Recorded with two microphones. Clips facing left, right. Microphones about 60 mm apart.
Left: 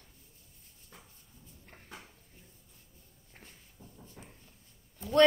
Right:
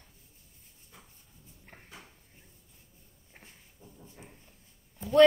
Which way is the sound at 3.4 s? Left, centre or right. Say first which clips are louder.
Even; centre.